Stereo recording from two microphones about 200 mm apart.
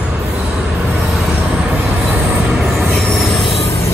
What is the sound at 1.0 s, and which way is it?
Train, 5° right (ahead or behind).